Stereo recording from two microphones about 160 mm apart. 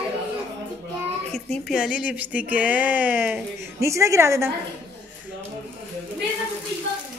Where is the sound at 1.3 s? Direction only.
Centre (ahead or behind); by 4.5 s 15° right (ahead or behind).